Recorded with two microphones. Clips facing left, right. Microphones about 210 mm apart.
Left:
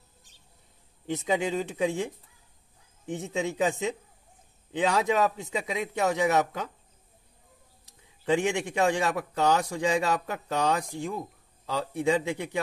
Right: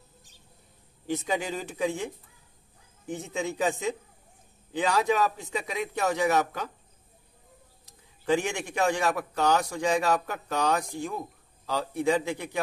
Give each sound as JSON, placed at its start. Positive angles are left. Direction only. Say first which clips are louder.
{"t": 1.0, "sound": "a man's voice", "louder": "left 2 dB", "side_deg": 25}
{"t": 3.1, "sound": "a man's voice", "louder": "left 1 dB", "side_deg": 25}
{"t": 8.3, "sound": "a man's voice", "louder": "left 1 dB", "side_deg": 25}